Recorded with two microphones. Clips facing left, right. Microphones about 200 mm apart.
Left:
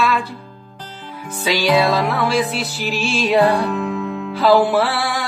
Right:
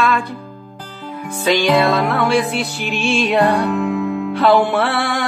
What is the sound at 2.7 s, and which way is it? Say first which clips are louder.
Music: right 2 dB; 55° right (ahead or behind).